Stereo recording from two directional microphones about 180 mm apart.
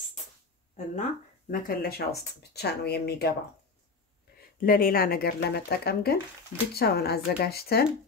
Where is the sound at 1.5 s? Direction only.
55° left (ahead or behind).